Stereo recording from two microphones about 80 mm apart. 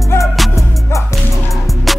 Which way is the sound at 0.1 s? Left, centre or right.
Left.